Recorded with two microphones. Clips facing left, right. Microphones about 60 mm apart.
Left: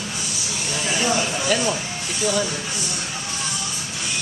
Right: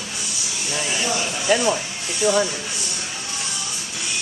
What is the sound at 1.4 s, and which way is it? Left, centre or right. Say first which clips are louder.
Speech: right 2 dB; centre.